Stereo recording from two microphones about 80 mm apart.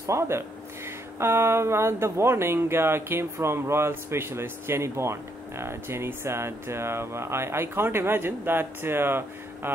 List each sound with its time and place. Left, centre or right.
0.0 s speech: right